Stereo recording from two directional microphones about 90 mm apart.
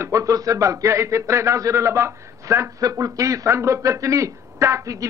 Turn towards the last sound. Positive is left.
turn(degrees=-35)  # may be behind; listen again after turning